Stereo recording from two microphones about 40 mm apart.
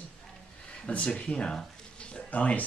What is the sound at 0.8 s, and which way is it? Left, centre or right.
Speech, left.